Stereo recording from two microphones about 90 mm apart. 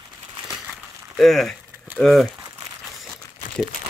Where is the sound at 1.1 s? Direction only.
5° left (ahead or behind).